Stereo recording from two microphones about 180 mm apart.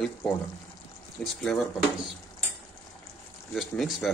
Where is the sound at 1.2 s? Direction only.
Centre (ahead or behind).